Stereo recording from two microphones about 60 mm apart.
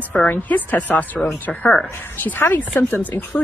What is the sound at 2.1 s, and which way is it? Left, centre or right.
Speech, left.